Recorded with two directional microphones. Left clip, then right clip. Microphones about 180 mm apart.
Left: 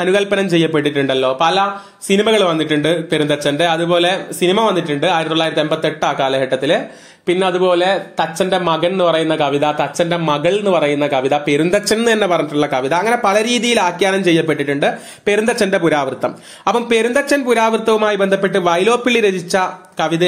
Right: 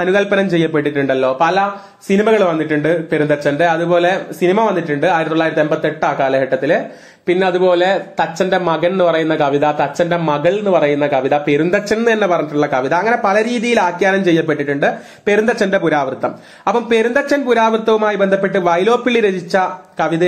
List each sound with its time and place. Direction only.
0.0 s a man's voice: 45° left (ahead or behind)